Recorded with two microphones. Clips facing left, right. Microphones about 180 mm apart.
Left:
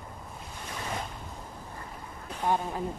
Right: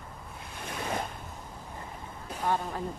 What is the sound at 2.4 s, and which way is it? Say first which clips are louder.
Speech: left 2 dB; 15° left (ahead or behind).